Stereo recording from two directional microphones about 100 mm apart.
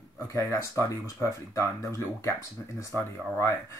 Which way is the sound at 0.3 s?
30° left (ahead or behind).